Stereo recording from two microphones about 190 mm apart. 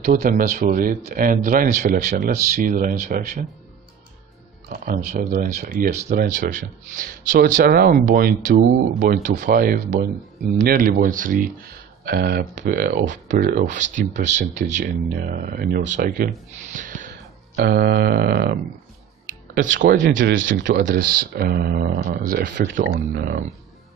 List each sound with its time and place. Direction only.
0.0 s speech: 45° right (ahead or behind)
4.6 s speech: 50° right (ahead or behind)
15.1 s speech: 50° right (ahead or behind)
17.1 s a sound: 55° right (ahead or behind)
19.7 s speech: 70° right (ahead or behind)
20.8 s speech: 55° right (ahead or behind)